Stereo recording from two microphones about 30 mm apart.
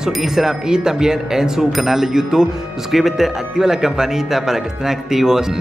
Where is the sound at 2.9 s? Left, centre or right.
Centre.